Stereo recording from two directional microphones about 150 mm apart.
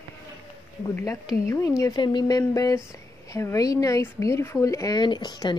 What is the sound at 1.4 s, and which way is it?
Speech, 20° left (ahead or behind).